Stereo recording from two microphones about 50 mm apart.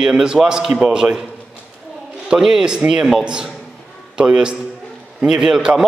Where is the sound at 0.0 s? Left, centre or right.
Centre.